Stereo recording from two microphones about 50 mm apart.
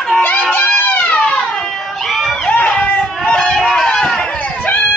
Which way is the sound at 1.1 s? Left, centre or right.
Centre.